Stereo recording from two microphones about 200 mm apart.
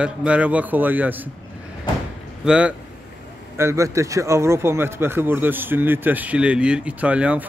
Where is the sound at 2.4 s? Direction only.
5° right (ahead or behind).